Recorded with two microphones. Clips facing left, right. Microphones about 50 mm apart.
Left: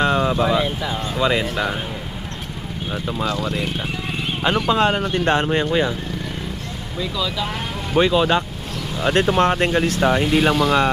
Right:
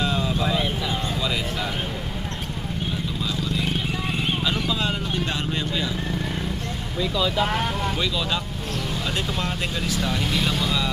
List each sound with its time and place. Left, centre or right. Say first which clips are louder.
0.0 s a sound: left 6 dB; left
1.2 s speech: left 7 dB; left
3.2 s speech: left 6 dB; left
4.6 s speech: left 8 dB; left
7.9 s speech: left 9 dB; left